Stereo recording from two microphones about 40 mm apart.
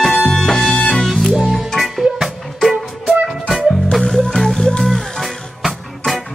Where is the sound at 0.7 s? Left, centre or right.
Left.